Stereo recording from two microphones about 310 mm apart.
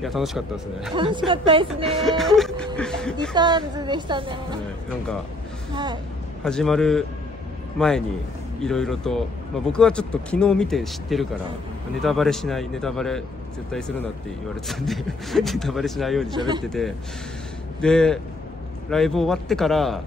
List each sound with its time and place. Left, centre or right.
0.0 s speech: centre
0.9 s a woman's voice: centre
1.9 s speech: centre
3.3 s a woman's voice: centre
6.4 s speech: centre
16.3 s a woman's voice: centre
16.6 s speech: centre